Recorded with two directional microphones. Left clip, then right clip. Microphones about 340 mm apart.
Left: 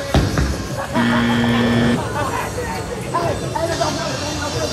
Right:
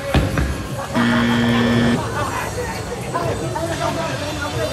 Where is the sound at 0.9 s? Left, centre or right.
Centre.